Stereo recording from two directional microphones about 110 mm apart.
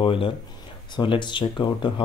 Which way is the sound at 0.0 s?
55° left (ahead or behind).